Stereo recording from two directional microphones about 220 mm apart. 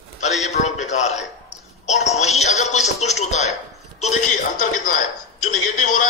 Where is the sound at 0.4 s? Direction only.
30° left (ahead or behind).